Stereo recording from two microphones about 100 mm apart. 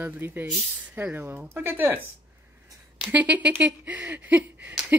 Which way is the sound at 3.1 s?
15° right (ahead or behind).